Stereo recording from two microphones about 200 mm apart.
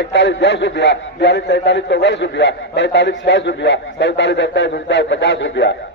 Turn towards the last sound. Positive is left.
turn(degrees=65)  # may be behind; listen again after turning